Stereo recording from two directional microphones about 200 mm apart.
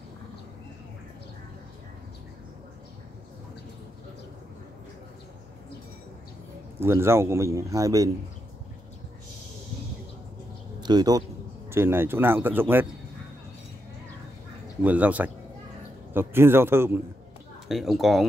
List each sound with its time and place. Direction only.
6.8 s a man's voice: 10° right (ahead or behind)
10.8 s a man's voice: 20° right (ahead or behind)
14.8 s a man's voice: 5° right (ahead or behind)
17.6 s speech: centre (ahead or behind)